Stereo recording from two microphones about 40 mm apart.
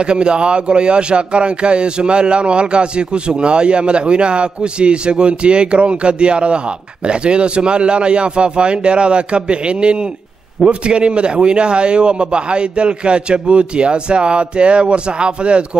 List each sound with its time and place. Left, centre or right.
0.0 s speech: right